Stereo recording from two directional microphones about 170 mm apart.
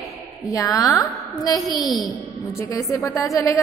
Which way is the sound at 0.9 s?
Centre (ahead or behind).